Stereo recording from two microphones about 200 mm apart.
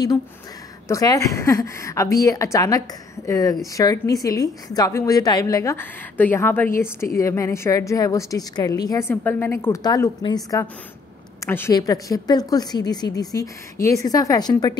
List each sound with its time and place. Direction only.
0.8 s a woman's voice: 15° left (ahead or behind)